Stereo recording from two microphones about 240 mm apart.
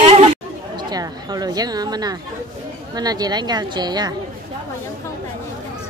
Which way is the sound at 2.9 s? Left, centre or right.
Centre.